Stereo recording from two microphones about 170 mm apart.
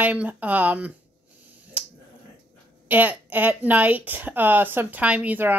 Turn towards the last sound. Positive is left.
turn(degrees=-10)  # may be behind; listen again after turning